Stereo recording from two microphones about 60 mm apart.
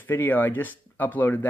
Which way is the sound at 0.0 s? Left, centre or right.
Left.